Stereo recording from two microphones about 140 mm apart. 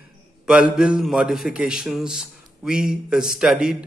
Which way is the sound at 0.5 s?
10° right (ahead or behind).